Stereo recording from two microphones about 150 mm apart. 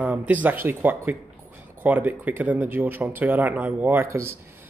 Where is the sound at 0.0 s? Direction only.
10° right (ahead or behind).